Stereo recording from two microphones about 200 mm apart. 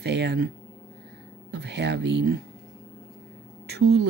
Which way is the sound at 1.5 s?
55° right (ahead or behind).